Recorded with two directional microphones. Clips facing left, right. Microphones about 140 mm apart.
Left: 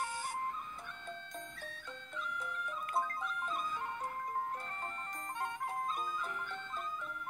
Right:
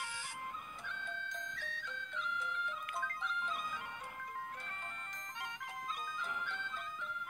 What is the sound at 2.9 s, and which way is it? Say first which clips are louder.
Music: left 5 dB; 40° left (ahead or behind).